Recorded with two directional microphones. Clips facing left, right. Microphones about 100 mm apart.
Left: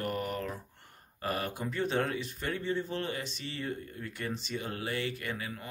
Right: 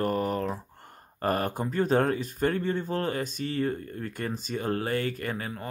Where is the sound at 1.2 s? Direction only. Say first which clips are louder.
Right 7 dB; 45° right (ahead or behind).